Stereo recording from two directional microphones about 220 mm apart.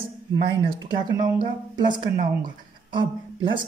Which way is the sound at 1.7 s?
20° right (ahead or behind).